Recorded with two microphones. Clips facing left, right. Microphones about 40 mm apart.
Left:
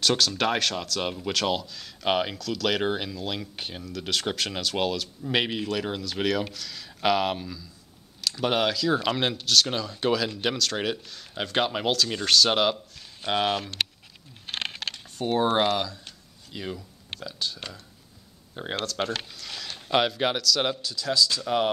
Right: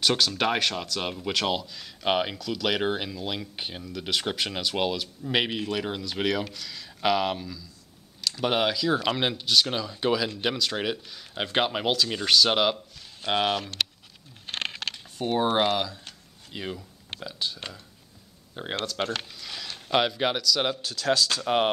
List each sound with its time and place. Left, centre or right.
0.0 s speech: centre
7.0 s speech: centre
8.2 s speech: centre
15.1 s speech: centre
16.5 s speech: right; by 19.1 s centre
19.3 s a sound: centre
20.8 s speech: right
21.4 s speech: right